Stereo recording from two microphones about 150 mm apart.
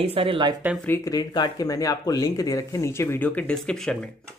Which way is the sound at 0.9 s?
25° left (ahead or behind).